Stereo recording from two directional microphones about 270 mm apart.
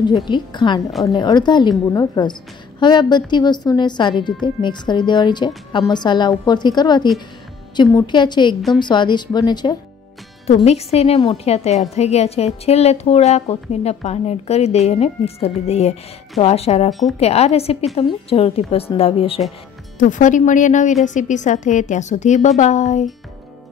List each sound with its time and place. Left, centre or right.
0.0 s a woman's voice: centre